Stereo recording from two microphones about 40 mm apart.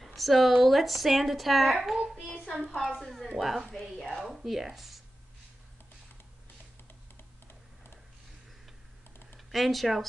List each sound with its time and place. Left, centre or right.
0.0 s speech: centre
2.7 s a woman's voice: centre
3.0 s speech: centre
4.1 s a sound: centre
4.5 s speech: centre
7.4 s tick: left
9.5 s speech: centre